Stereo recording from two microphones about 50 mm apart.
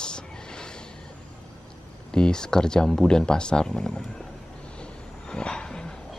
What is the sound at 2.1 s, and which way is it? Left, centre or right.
Speech, centre.